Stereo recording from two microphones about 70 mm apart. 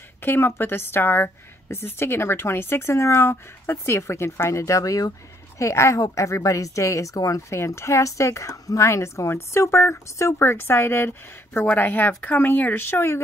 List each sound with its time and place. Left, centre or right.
0.2 s a woman's voice: left